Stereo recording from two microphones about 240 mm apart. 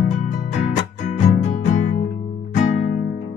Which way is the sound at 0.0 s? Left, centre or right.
Left.